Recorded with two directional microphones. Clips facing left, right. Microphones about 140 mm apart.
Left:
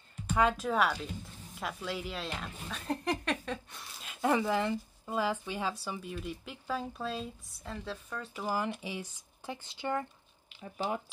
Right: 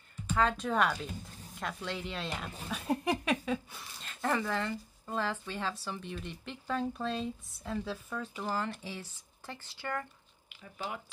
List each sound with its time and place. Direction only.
0.4 s speech: 5° left (ahead or behind)
8.5 s speech: 15° left (ahead or behind)
10.6 s speech: 30° left (ahead or behind)